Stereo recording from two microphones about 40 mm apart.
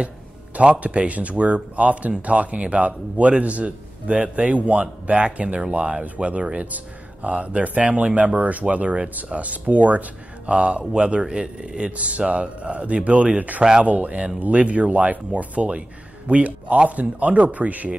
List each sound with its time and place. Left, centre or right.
0.6 s speech: right
10.5 s speech: right
12.0 s speech: right